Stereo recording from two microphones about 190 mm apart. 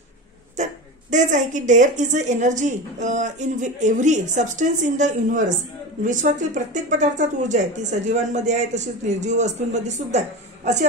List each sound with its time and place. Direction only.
1.1 s speech: 40° right (ahead or behind)